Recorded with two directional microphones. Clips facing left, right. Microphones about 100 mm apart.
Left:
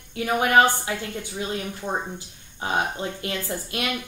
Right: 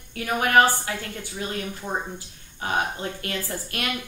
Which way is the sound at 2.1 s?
20° left (ahead or behind).